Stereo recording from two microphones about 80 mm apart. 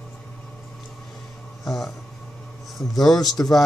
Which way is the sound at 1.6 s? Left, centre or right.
Centre.